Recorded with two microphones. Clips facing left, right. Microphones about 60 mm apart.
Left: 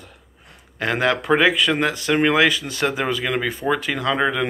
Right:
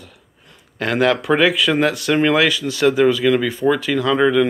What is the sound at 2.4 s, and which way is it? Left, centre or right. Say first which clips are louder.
Speech: right 1 dB; left.